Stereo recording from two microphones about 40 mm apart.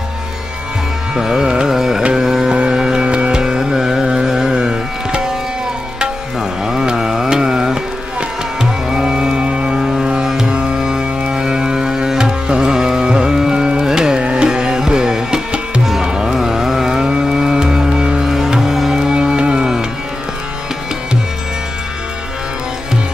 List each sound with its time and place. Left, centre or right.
1.1 s carnatic music: centre
6.6 s carnatic music: centre
8.2 s music: centre
14.2 s tabla: right
16.3 s music: centre
18.2 s music: centre